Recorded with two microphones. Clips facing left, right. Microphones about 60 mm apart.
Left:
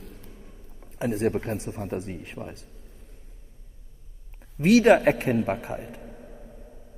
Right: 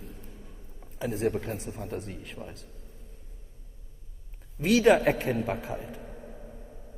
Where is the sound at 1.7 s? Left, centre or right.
Left.